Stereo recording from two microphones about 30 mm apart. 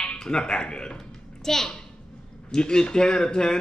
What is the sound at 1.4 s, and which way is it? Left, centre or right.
Speech, centre.